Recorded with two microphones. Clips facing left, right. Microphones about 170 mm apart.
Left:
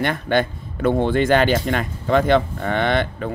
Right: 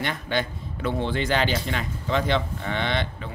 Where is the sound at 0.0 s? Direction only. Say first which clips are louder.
Left 7 dB; 55° left (ahead or behind).